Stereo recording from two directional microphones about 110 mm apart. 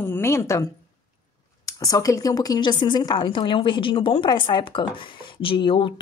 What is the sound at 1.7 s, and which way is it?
A woman's voice, 35° left (ahead or behind).